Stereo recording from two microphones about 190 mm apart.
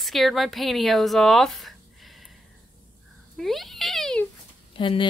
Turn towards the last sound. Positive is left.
turn(degrees=25)  # may be behind; listen again after turning